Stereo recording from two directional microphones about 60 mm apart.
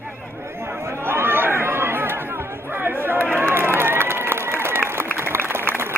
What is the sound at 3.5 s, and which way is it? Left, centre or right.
Run, right.